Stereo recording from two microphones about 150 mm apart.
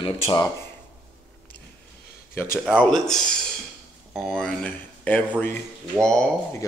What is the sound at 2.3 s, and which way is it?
Speech, 15° left (ahead or behind).